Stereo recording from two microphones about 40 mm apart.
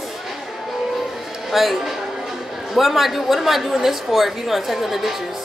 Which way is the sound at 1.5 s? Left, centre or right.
Centre.